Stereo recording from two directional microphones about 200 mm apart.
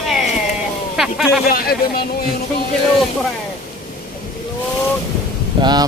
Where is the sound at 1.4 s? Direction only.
50° left (ahead or behind).